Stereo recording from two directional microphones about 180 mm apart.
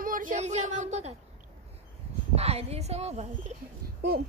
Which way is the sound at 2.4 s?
35° right (ahead or behind).